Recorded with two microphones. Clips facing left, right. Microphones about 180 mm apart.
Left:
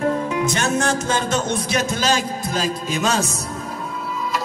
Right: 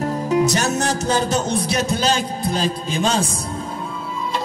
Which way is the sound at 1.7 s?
35° right (ahead or behind).